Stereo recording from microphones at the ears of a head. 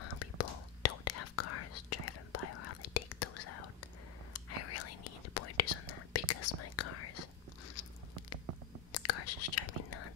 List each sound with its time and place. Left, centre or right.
0.0 s whispering: left
8.9 s whispering: left